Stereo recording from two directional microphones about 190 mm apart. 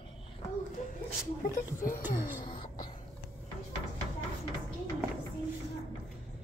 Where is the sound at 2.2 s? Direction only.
25° left (ahead or behind).